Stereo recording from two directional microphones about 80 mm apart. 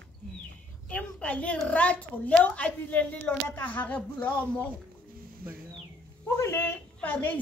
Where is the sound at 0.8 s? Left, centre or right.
Centre.